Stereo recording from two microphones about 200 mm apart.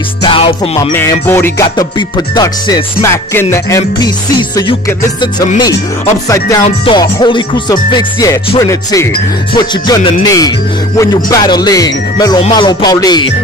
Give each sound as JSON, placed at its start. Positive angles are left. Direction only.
{"t": 0.2, "sound": "music", "side_deg": 25}
{"t": 0.9, "sound": "music", "side_deg": 10}
{"t": 6.2, "sound": "speech", "side_deg": 15}
{"t": 8.5, "sound": "music", "side_deg": 15}
{"t": 9.5, "sound": "speech", "side_deg": 20}